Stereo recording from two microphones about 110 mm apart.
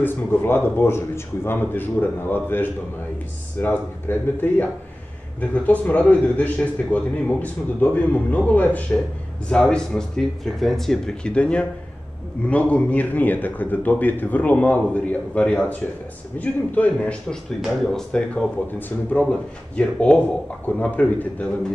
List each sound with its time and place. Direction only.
0.0 s a man's voice: 20° left (ahead or behind)